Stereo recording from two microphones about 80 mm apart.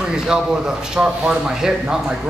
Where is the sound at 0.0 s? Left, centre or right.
Centre.